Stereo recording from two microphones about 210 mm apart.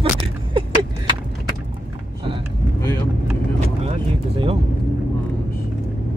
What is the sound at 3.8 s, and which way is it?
Vehicle, 30° right (ahead or behind).